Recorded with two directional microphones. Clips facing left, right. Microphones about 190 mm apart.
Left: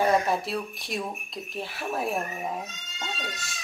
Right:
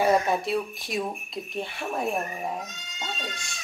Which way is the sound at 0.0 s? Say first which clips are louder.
Right 1 dB; centre (ahead or behind).